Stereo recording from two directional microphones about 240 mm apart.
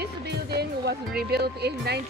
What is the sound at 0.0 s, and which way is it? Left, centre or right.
Speech, right.